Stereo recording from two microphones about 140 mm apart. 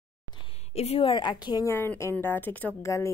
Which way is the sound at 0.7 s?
45° left (ahead or behind).